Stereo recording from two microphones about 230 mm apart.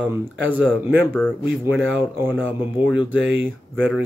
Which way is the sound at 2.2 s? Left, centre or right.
Centre.